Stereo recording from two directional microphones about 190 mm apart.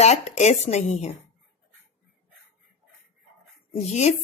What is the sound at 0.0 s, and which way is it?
Speech, 35° left (ahead or behind).